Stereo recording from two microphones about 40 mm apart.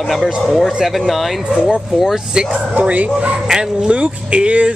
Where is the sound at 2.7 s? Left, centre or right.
Right.